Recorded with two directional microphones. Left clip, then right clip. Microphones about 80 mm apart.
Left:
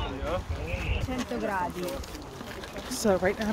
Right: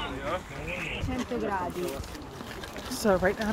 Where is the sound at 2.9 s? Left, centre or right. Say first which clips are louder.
Even; left.